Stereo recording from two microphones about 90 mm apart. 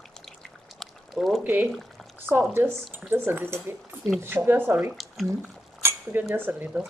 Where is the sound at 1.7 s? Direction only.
Centre (ahead or behind).